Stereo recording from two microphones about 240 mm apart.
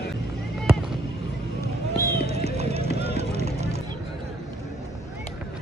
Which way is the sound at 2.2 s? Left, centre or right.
Right.